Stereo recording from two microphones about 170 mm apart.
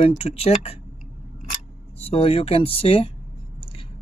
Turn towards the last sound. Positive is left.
turn(degrees=30)  # may be behind; listen again after turning